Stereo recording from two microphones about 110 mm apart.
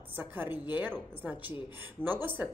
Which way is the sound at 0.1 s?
15° right (ahead or behind).